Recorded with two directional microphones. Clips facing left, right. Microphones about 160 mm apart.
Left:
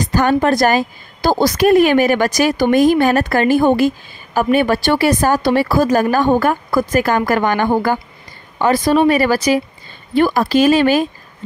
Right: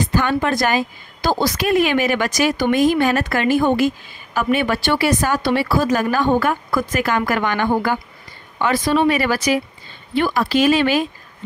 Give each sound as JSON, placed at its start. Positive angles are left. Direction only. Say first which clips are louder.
{"t": 0.0, "sound": "a woman's voice", "louder": "left 4 dB", "side_deg": 40}